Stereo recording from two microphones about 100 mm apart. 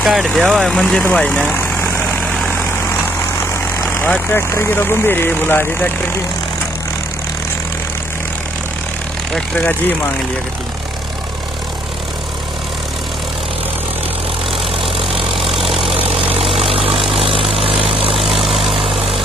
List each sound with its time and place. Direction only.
0.0 s speech: centre (ahead or behind)
1.1 s vehicle: 10° left (ahead or behind)
4.0 s speech: 20° left (ahead or behind)
15.3 s vehicle: centre (ahead or behind)
16.0 s vehicle: 70° right (ahead or behind)
18.1 s vehicle: centre (ahead or behind)